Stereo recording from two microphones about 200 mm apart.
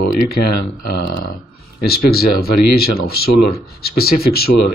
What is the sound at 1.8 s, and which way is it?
Speech, 50° left (ahead or behind).